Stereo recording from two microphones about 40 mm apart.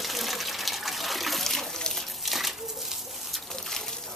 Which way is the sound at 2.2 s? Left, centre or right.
Centre.